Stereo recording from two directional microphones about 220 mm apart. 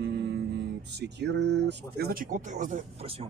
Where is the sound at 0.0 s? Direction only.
50° right (ahead or behind).